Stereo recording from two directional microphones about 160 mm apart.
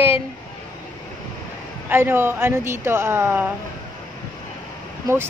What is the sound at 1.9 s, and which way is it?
A woman's voice, 15° right (ahead or behind).